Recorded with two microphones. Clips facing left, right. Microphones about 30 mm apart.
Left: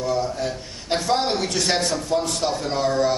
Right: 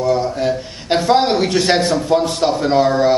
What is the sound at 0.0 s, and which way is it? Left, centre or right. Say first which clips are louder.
A man's voice: right 7 dB; right.